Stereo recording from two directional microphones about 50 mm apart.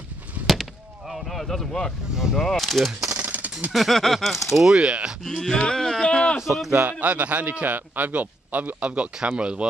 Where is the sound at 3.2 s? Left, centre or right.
Right.